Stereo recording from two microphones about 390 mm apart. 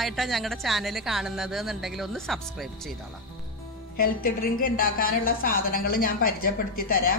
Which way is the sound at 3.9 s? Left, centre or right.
Left.